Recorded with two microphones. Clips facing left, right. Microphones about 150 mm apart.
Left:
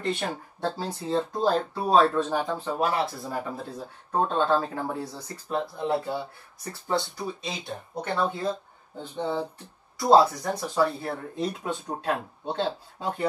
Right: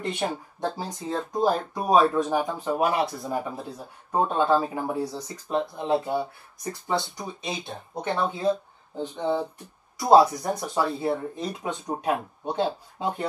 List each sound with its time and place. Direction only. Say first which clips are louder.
0.0 s speech: right 1 dB; 15° right (ahead or behind)